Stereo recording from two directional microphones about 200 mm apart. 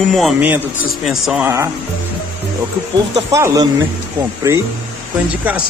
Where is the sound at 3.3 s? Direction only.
15° right (ahead or behind).